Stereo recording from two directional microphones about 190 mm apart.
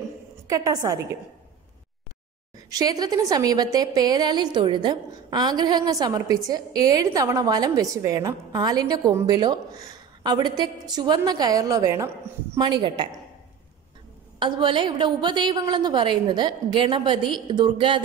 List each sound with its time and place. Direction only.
0.5 s a woman's voice: 20° right (ahead or behind)
2.7 s a woman's voice: 20° right (ahead or behind)
14.4 s a woman's voice: 25° right (ahead or behind)